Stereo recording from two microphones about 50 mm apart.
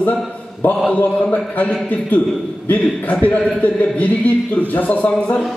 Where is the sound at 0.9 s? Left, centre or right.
Left.